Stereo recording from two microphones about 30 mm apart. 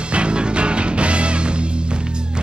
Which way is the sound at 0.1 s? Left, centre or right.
Right.